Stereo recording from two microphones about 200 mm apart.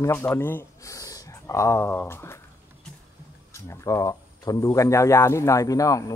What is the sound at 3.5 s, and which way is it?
Speech, 15° left (ahead or behind).